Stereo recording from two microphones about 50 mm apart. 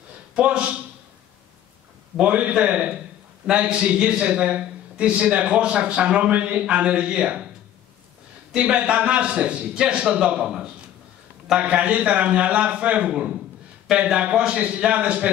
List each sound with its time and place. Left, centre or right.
0.4 s a man's voice: right
2.1 s a man's voice: right
8.5 s a man's voice: right
11.6 s a man's voice: right